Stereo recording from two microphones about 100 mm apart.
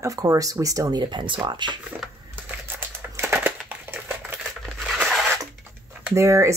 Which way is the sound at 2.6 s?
20° right (ahead or behind).